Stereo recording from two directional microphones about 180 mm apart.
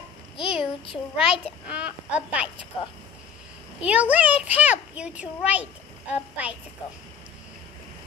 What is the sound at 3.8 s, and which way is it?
A child's voice, 5° right (ahead or behind).